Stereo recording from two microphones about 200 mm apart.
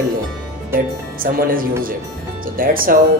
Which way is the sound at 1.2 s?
45° right (ahead or behind).